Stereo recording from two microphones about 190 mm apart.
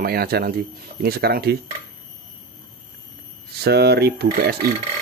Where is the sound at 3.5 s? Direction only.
60° right (ahead or behind).